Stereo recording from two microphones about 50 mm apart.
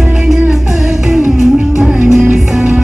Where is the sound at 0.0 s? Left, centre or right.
Centre.